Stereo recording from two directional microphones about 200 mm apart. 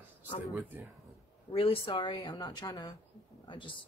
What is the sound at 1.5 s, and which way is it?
Speech, 25° left (ahead or behind).